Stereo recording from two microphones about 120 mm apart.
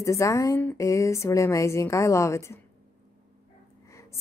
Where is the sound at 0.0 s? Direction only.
25° left (ahead or behind).